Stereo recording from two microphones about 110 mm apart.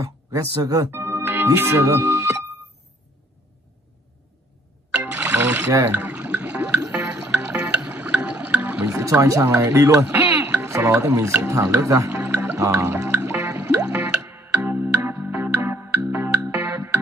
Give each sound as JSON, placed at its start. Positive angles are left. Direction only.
{"t": 0.0, "sound": "speech", "side_deg": -30}
{"t": 0.9, "sound": "organ", "side_deg": -20}
{"t": 4.9, "sound": "music", "side_deg": -10}
{"t": 8.9, "sound": "speech", "side_deg": -30}
{"t": 12.3, "sound": "music", "side_deg": -15}
{"t": 12.5, "sound": "music", "side_deg": -25}